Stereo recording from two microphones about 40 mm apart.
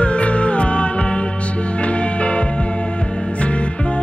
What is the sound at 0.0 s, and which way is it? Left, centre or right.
Music, left.